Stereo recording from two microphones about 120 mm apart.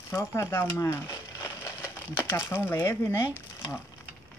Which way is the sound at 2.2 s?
20° left (ahead or behind).